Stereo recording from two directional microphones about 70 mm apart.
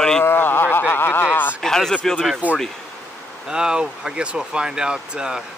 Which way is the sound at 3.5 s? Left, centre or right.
Centre.